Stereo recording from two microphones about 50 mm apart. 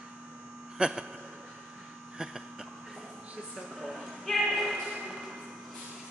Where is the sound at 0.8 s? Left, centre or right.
Centre.